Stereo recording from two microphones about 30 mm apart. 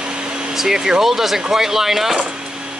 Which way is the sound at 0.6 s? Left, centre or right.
Centre.